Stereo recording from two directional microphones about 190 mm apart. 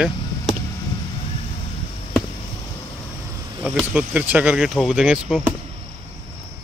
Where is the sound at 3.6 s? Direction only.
5° right (ahead or behind).